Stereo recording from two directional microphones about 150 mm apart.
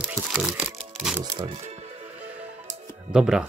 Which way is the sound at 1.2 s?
25° right (ahead or behind).